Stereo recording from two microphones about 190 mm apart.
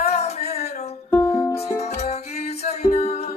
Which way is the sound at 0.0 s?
35° left (ahead or behind).